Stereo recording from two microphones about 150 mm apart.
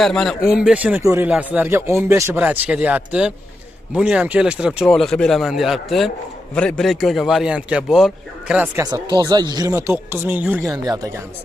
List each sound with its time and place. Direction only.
0.0 s speech: 5° left (ahead or behind)
1.0 s speech: 20° right (ahead or behind)
1.3 s speech: 10° right (ahead or behind)
8.7 s speech: 25° right (ahead or behind)
10.7 s speech: 25° right (ahead or behind)